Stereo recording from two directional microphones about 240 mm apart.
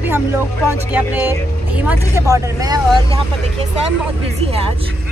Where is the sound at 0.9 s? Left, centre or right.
Centre.